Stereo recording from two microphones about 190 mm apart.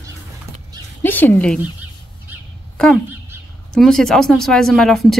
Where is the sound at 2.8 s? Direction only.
5° left (ahead or behind).